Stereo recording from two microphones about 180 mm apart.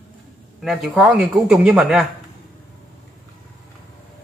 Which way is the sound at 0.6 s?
Centre (ahead or behind).